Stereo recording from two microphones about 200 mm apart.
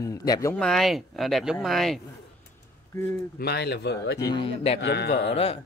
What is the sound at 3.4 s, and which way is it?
Speech, 55° left (ahead or behind).